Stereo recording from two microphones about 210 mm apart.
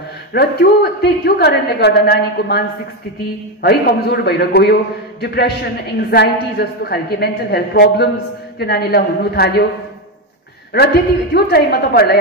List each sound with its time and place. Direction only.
0.3 s a woman's voice: 50° left (ahead or behind)
3.6 s a woman's voice: 50° left (ahead or behind)
11.3 s a woman's voice: 50° left (ahead or behind)